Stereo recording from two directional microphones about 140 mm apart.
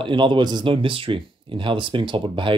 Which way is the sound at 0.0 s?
35° right (ahead or behind).